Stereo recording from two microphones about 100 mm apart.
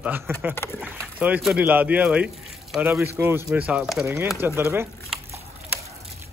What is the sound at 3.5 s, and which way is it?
Speech, 15° right (ahead or behind).